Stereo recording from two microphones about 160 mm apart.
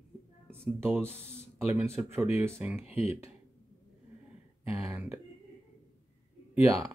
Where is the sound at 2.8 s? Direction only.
40° left (ahead or behind).